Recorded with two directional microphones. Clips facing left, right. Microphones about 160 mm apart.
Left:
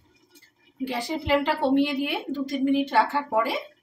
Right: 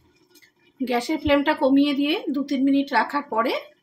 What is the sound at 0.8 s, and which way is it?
A woman's voice, 75° right (ahead or behind).